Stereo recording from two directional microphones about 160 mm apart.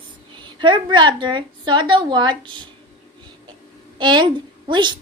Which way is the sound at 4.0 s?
30° right (ahead or behind).